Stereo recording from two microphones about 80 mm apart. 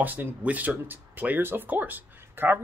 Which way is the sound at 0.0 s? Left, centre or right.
Right.